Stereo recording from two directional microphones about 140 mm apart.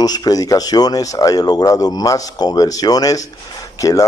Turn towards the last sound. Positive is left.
turn(degrees=25)  # may be behind; listen again after turning